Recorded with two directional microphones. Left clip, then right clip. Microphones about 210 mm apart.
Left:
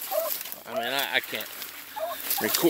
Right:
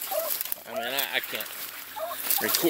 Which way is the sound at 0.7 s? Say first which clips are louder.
Left 2 dB; 30° left (ahead or behind).